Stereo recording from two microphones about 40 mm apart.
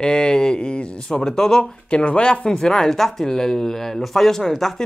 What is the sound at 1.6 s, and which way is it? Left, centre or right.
Speech, left.